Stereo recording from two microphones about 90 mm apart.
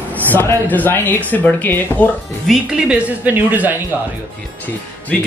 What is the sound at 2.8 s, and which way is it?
Speech, 15° right (ahead or behind).